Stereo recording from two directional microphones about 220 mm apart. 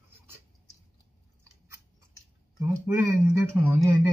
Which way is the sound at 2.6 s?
10° right (ahead or behind).